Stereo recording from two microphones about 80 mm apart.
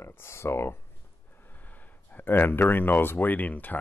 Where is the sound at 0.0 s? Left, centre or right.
Left.